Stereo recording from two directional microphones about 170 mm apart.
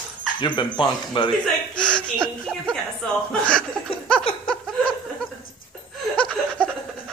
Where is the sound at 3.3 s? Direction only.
5° left (ahead or behind).